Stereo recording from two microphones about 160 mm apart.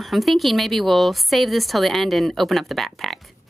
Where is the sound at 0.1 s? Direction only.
Centre (ahead or behind).